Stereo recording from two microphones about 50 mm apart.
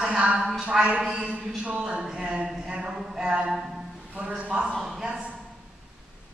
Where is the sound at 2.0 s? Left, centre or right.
Centre.